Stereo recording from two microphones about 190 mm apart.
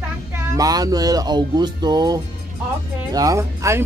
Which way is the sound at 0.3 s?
20° right (ahead or behind).